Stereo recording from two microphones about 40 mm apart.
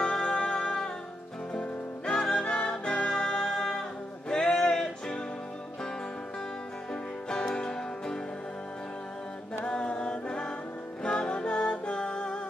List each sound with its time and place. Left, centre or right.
0.0 s music: centre
4.3 s a sound: centre
6.9 s music: centre
9.7 s a capella: left
11.1 s music: left